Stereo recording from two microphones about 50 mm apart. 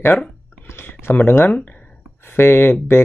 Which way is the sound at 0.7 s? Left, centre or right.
Left.